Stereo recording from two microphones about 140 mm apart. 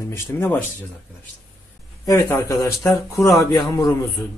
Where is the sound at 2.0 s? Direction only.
20° left (ahead or behind).